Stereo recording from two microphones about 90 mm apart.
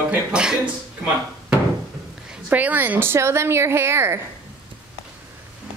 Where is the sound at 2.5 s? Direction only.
20° right (ahead or behind).